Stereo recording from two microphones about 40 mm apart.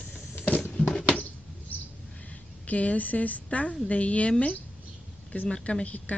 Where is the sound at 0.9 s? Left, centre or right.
Left.